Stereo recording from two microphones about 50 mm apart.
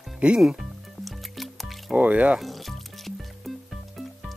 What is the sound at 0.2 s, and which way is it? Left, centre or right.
Speech, right.